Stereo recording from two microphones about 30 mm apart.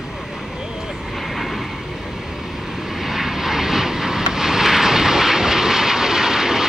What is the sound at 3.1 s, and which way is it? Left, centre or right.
Vehicle, centre.